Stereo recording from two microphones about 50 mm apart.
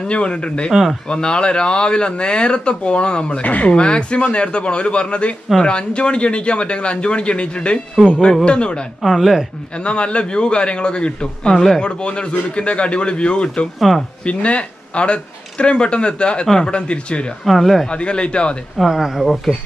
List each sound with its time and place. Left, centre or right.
0.0 s speech: centre
3.4 s speech: left
3.7 s speech: centre
9.0 s speech: centre
9.8 s speech: left
11.5 s speech: centre
11.8 s speech: left
13.7 s speech: centre
14.2 s speech: left
17.5 s speech: centre
17.8 s speech: left
18.9 s speech: centre